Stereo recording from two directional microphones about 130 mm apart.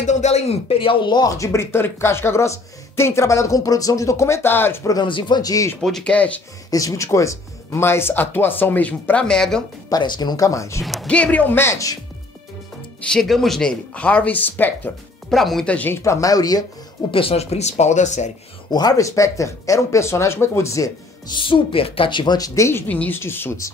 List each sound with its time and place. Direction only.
0.0 s speech: 65° left (ahead or behind); by 4.9 s 15° left (ahead or behind)
4.9 s speech: 35° left (ahead or behind)
5.8 s speech: 5° left (ahead or behind)
6.7 s speech: 25° left (ahead or behind); by 9.6 s 5° left (ahead or behind)
9.8 s speech: 35° left (ahead or behind)
10.8 s speech: centre (ahead or behind); by 12.0 s 25° left (ahead or behind)
13.0 s speech: 5° left (ahead or behind)
15.2 s speech: centre (ahead or behind)
16.0 s speech: 25° left (ahead or behind)
17.1 s speech: 45° left (ahead or behind); by 18.3 s 65° left (ahead or behind)
18.7 s speech: 30° left (ahead or behind)
21.4 s speech: 40° left (ahead or behind); by 23.7 s 15° left (ahead or behind)